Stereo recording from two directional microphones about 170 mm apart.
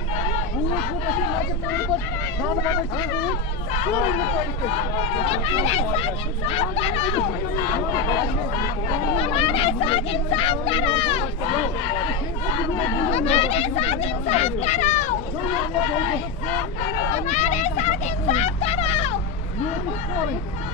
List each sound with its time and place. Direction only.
2.6 s speech: 25° left (ahead or behind)
5.2 s speech: 35° left (ahead or behind)
9.2 s speech: 35° left (ahead or behind)
13.1 s speech: 35° left (ahead or behind)
17.1 s vehicle: 45° left (ahead or behind)